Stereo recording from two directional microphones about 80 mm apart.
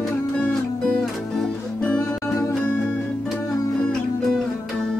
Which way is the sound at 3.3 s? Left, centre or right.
Left.